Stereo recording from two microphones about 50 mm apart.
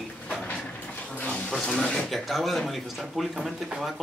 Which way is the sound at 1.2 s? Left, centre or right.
Left.